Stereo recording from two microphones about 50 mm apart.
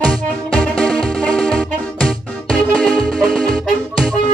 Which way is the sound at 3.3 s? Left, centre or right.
Centre.